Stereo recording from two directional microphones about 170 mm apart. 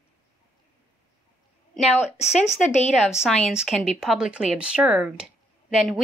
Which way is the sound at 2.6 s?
40° left (ahead or behind).